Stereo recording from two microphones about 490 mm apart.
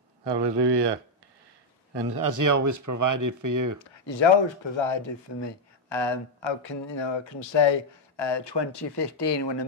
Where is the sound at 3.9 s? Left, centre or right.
Left.